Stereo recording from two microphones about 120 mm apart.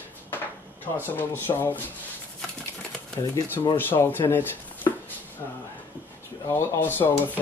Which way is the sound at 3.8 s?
15° left (ahead or behind).